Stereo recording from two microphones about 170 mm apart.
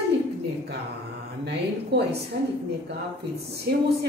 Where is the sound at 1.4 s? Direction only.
75° right (ahead or behind).